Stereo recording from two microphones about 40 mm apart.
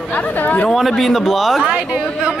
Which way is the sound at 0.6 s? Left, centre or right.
Centre.